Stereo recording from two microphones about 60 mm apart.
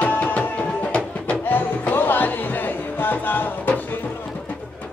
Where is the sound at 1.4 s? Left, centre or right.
Left.